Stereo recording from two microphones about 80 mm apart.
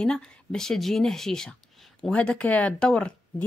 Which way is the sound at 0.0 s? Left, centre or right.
Centre.